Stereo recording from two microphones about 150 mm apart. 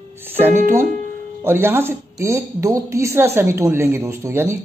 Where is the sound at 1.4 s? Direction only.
15° right (ahead or behind).